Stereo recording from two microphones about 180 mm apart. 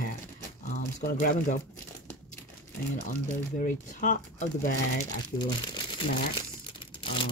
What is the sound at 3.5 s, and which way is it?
Speech, 45° left (ahead or behind).